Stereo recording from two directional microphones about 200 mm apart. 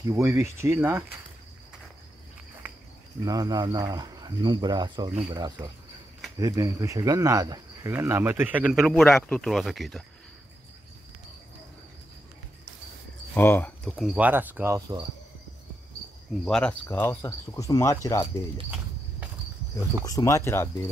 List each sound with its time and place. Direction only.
0.1 s speech: 15° right (ahead or behind)
3.3 s speech: 20° right (ahead or behind); by 10.0 s centre (ahead or behind)
13.3 s speech: 10° left (ahead or behind); by 15.0 s 15° right (ahead or behind)
16.4 s speech: 5° left (ahead or behind)
20.1 s speech: 15° left (ahead or behind)